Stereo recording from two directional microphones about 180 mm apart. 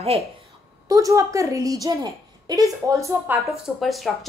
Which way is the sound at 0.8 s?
20° right (ahead or behind).